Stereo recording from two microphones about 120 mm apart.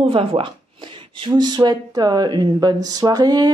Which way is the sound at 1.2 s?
40° right (ahead or behind).